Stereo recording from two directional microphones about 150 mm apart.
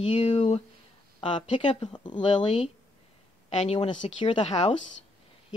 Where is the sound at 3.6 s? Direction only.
45° left (ahead or behind).